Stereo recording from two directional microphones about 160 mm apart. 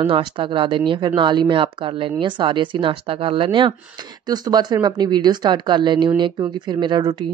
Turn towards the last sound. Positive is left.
turn(degrees=-25)  # may be behind; listen again after turning